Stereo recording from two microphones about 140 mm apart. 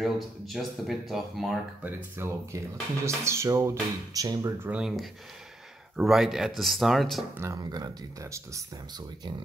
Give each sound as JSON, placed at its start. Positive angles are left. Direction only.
{"t": 0.0, "sound": "speech", "side_deg": 0}
{"t": 2.1, "sound": "speech", "side_deg": -20}
{"t": 4.6, "sound": "speech", "side_deg": -5}
{"t": 7.3, "sound": "speech", "side_deg": -25}